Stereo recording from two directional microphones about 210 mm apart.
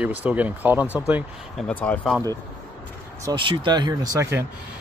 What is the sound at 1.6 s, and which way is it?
Speech, 5° left (ahead or behind).